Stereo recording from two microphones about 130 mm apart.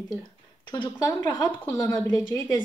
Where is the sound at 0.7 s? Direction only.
35° left (ahead or behind).